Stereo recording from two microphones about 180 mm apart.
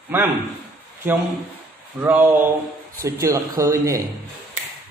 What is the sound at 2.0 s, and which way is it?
A man's voice, 10° right (ahead or behind).